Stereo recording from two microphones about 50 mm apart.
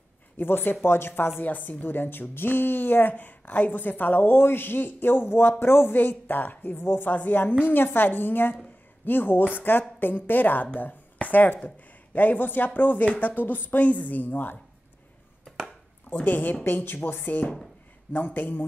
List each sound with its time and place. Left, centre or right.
0.4 s speech: left
1.4 s speech: left
6.8 s speech: left
7.1 s speech: left
15.4 s a sound: centre
16.1 s speech: left
16.8 s speech: left